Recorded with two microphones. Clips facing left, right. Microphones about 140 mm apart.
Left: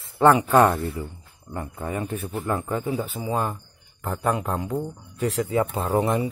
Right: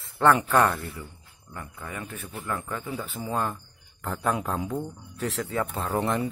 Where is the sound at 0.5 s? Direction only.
25° left (ahead or behind).